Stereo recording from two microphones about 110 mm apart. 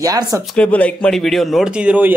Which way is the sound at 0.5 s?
10° left (ahead or behind).